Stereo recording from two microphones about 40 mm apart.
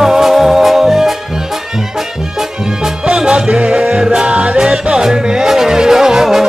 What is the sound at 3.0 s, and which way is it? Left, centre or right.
Music, right.